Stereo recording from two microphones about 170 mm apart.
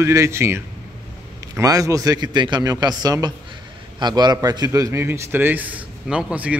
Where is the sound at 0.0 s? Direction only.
15° right (ahead or behind).